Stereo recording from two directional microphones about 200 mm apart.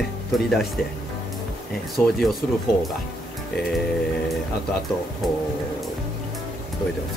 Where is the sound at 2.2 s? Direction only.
Centre (ahead or behind).